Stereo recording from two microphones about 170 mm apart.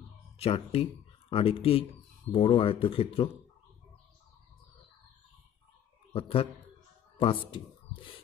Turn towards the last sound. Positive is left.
turn(degrees=30)  # may be behind; listen again after turning